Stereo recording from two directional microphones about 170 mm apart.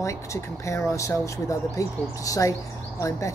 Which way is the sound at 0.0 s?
15° left (ahead or behind).